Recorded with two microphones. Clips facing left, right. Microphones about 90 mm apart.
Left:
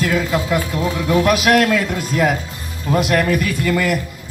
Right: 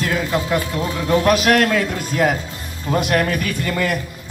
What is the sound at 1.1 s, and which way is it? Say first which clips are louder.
A man's voice: even; 40° right (ahead or behind).